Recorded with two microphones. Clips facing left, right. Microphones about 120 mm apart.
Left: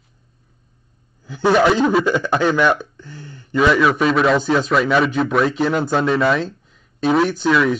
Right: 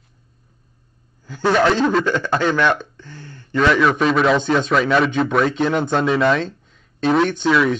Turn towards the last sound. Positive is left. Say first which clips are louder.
# even
turn(degrees=5)  # may be behind; listen again after turning